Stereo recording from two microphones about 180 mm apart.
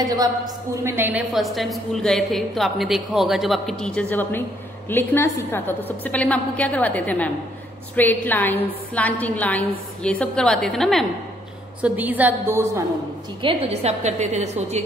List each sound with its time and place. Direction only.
0.8 s a woman's voice: 10° right (ahead or behind)
11.8 s a woman's voice: 10° right (ahead or behind)
13.4 s a woman's voice: 30° right (ahead or behind)